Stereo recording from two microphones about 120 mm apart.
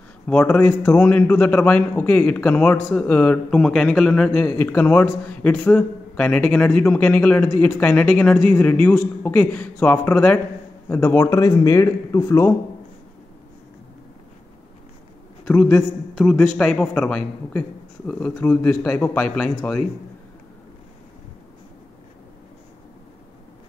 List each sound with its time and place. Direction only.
0.3 s a man's voice: 15° left (ahead or behind)
15.4 s a man's voice: 10° left (ahead or behind)